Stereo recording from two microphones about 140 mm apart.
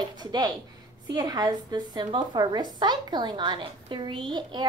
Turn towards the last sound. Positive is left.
turn(degrees=-35)  # may be behind; listen again after turning